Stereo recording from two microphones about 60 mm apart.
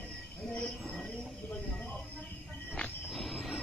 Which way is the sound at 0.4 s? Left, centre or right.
Centre.